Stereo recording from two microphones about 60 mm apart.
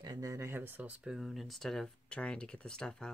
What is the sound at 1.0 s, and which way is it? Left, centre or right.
Speech, centre.